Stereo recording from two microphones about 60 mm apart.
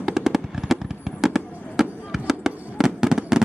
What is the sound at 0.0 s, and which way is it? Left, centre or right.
Fireworks, centre.